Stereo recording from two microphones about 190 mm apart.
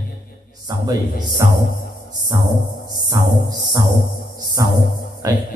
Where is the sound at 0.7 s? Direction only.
20° right (ahead or behind).